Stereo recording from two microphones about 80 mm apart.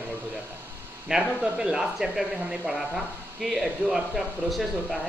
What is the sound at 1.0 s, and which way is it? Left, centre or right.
Speech, centre.